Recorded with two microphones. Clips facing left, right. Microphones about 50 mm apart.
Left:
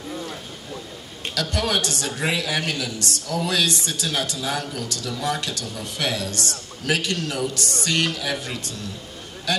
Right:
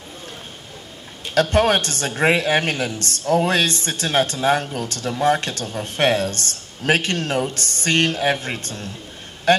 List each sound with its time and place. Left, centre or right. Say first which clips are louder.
1.3 s a man's voice: right 8 dB; right